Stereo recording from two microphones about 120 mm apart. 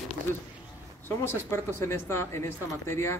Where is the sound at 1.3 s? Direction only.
20° left (ahead or behind).